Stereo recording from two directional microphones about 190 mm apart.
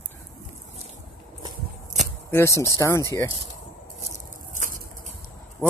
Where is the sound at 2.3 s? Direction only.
15° left (ahead or behind).